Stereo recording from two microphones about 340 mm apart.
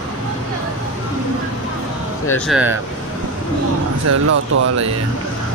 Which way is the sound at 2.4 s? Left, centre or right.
Centre.